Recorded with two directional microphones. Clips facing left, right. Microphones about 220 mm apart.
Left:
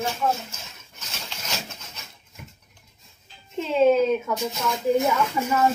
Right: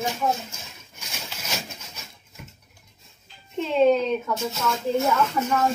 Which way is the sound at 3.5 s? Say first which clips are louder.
Left 1 dB; centre (ahead or behind).